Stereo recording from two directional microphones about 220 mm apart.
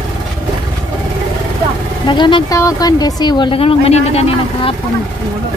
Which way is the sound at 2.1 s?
20° left (ahead or behind).